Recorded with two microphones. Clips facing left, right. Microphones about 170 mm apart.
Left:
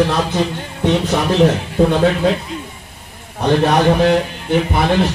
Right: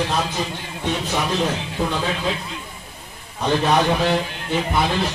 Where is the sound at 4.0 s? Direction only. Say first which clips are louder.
Left 7 dB; 60° left (ahead or behind).